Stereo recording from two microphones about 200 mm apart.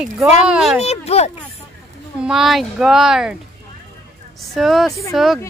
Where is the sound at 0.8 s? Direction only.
30° left (ahead or behind).